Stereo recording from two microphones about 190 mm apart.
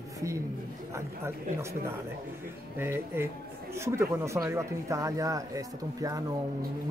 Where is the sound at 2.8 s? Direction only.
10° right (ahead or behind).